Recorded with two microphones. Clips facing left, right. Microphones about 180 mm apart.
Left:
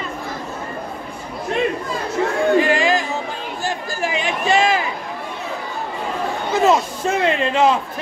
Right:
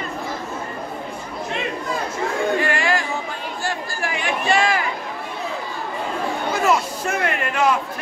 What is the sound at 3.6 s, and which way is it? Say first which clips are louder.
Chatter: left 3 dB; 20° left (ahead or behind).